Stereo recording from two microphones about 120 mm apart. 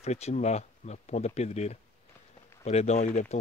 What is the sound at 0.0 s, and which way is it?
Speech, 65° left (ahead or behind).